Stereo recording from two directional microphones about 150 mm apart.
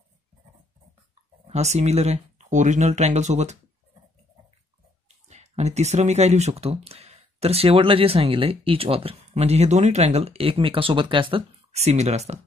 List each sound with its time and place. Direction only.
1.5 s speech: 50° right (ahead or behind)
5.0 s speech: 50° right (ahead or behind)